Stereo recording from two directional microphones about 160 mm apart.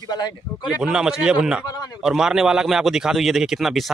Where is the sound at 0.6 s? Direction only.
5° right (ahead or behind).